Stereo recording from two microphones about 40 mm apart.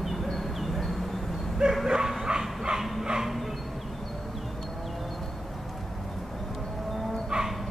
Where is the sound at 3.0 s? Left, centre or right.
Centre.